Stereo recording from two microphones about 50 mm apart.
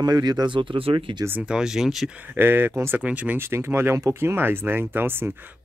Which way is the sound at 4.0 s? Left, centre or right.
Right.